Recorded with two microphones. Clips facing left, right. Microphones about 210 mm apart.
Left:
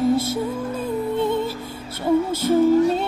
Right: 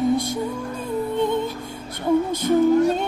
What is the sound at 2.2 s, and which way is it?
Music, 15° right (ahead or behind).